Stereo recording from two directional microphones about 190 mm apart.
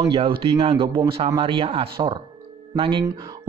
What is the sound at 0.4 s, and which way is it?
A man's voice, 30° right (ahead or behind).